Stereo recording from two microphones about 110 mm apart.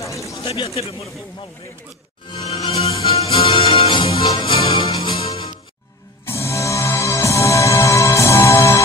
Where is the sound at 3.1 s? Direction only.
60° left (ahead or behind).